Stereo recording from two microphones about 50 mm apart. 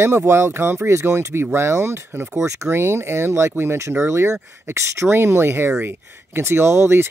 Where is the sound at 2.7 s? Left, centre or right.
Right.